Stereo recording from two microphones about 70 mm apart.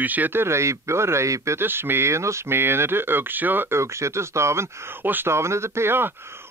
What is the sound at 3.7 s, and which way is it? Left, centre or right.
Speech, right.